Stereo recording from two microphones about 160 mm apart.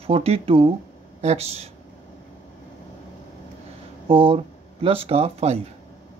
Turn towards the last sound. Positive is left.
turn(degrees=-40)  # may be behind; listen again after turning